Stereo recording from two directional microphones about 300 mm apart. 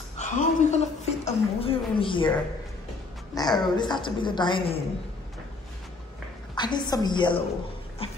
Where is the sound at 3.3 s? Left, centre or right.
Centre.